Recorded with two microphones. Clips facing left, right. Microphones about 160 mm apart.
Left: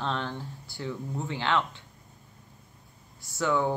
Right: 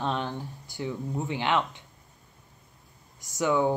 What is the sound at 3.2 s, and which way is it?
Speech, 15° right (ahead or behind).